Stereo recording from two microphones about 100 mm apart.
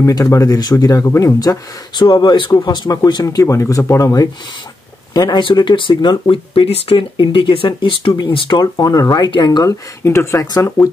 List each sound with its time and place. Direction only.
0.0 s speech: 35° left (ahead or behind)
10.0 s speech: 30° left (ahead or behind)